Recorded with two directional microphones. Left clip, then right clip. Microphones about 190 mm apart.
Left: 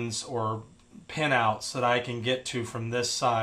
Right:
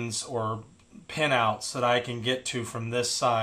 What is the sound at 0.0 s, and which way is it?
Speech, 5° left (ahead or behind).